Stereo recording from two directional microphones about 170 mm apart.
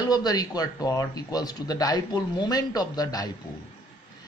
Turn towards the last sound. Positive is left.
turn(degrees=20)  # may be behind; listen again after turning